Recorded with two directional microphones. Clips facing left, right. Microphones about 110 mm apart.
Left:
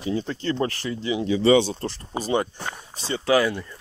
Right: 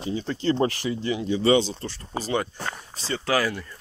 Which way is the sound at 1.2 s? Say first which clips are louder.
Left 3 dB; 65° left (ahead or behind).